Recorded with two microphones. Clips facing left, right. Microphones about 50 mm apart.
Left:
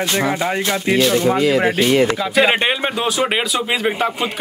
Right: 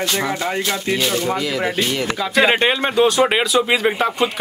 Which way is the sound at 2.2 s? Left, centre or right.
Centre.